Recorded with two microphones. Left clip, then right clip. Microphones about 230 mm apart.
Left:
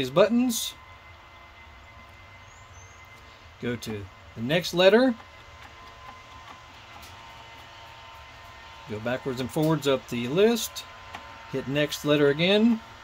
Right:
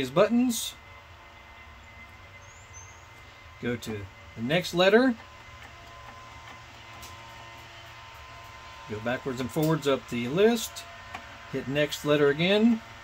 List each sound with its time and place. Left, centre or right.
0.0 s speech: left
3.6 s speech: left
9.0 s speech: left